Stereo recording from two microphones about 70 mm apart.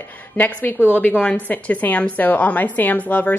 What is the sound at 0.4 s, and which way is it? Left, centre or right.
A woman's voice, left.